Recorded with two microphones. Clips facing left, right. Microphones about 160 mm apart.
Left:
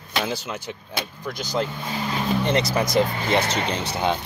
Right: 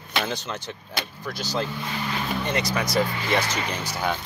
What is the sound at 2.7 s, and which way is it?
Speech, 25° left (ahead or behind).